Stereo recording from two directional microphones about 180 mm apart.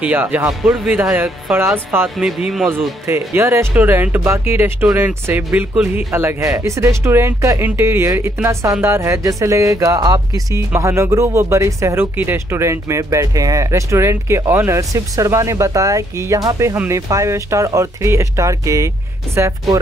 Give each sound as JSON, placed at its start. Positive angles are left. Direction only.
{"t": 0.0, "sound": "speech", "side_deg": -10}
{"t": 2.1, "sound": "speech", "side_deg": 0}
{"t": 3.1, "sound": "speech", "side_deg": -15}